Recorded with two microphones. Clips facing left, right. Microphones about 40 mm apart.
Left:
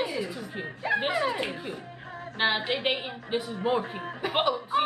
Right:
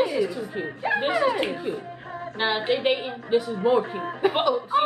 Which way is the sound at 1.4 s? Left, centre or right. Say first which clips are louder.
Right 6 dB; centre.